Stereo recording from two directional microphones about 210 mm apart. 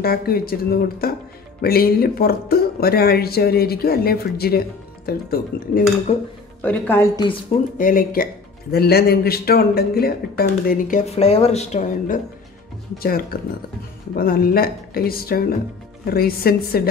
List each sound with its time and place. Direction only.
0.0 s speech: 45° left (ahead or behind)
6.1 s speech: 30° left (ahead or behind)
6.6 s a woman's voice: 10° left (ahead or behind)
7.7 s speech: 40° left (ahead or behind)
13.0 s speech: 45° left (ahead or behind)